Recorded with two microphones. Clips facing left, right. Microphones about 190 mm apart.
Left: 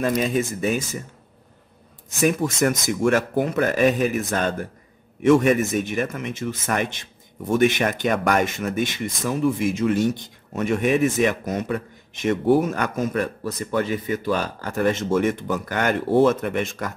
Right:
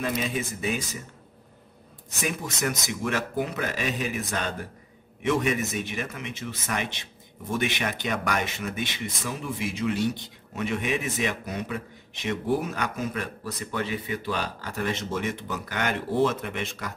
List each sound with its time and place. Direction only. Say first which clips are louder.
0.2 s speech: left 7 dB; 45° left (ahead or behind)
2.2 s speech: left 9 dB; 50° left (ahead or behind)